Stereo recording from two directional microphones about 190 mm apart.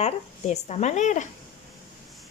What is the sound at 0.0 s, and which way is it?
A woman's voice, 35° left (ahead or behind).